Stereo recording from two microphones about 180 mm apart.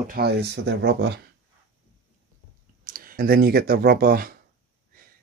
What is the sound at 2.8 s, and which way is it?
Speech, 55° right (ahead or behind).